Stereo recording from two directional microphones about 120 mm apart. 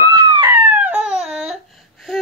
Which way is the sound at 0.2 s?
40° right (ahead or behind).